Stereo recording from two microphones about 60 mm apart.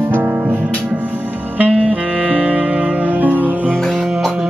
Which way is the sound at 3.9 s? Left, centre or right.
Centre.